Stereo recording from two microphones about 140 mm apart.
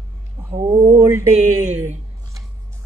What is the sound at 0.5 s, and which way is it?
Speech, 25° right (ahead or behind).